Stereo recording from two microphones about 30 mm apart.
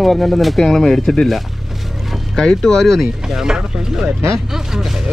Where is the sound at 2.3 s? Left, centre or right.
Centre.